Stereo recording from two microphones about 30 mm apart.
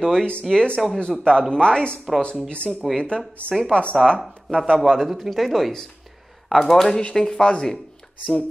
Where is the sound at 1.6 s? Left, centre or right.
Left.